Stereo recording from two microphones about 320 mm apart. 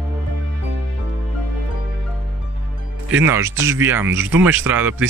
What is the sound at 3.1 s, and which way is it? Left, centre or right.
Speech, centre.